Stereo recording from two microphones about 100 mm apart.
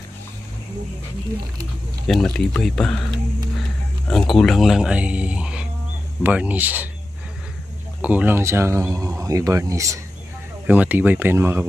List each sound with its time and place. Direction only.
2.0 s speech: 5° left (ahead or behind)
4.1 s speech: 5° left (ahead or behind); by 6.9 s 15° right (ahead or behind)
8.0 s speech: 15° right (ahead or behind); by 9.9 s 35° right (ahead or behind)
10.7 s speech: 15° right (ahead or behind)